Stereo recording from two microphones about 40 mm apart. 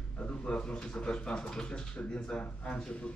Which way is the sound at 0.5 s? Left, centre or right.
Left.